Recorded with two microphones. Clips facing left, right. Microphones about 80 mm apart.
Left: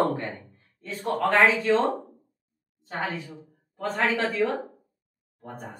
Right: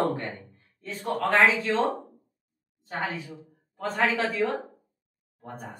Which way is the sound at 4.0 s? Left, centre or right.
Centre.